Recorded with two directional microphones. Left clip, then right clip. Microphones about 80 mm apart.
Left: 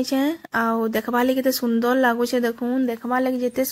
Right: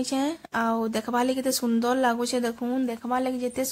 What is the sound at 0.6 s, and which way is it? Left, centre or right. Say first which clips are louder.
A woman's voice: left 4 dB; left.